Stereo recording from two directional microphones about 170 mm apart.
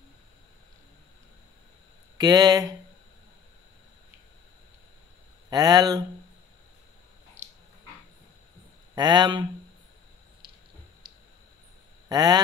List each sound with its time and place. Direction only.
2.1 s speech: 20° right (ahead or behind)
5.5 s speech: 20° right (ahead or behind)
8.9 s speech: 25° right (ahead or behind)
12.1 s speech: 25° right (ahead or behind)